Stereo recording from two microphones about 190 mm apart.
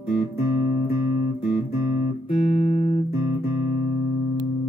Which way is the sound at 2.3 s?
30° left (ahead or behind).